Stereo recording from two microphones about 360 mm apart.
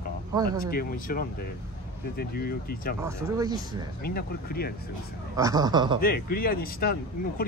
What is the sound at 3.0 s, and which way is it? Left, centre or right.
Speech, centre.